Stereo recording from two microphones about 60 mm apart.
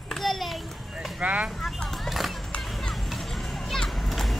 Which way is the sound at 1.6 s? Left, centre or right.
Centre.